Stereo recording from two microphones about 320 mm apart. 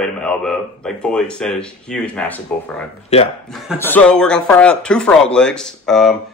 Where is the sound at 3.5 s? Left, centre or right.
Centre.